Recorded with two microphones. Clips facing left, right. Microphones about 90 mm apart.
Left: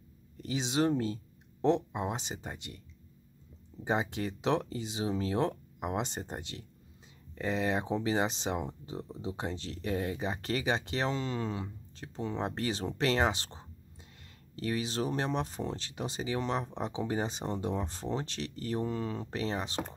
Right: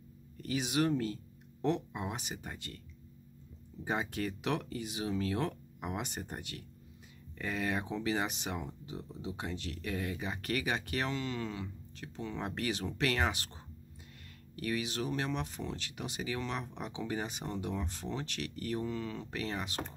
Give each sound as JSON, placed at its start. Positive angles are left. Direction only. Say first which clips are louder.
{"t": 0.4, "sound": "speech", "louder": "left 2 dB", "side_deg": 20}
{"t": 3.8, "sound": "speech", "louder": "left 3 dB", "side_deg": 20}